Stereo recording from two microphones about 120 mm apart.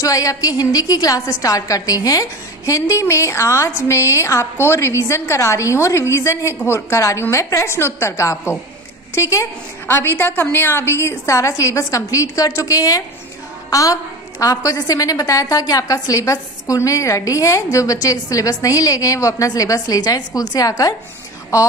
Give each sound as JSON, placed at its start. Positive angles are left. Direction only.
{"t": 0.0, "sound": "a woman's voice", "side_deg": 30}